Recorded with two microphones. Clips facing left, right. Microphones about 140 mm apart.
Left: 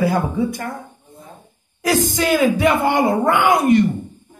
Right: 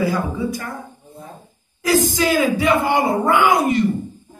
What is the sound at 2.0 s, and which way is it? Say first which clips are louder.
A man's voice: left 1 dB; 55° left (ahead or behind).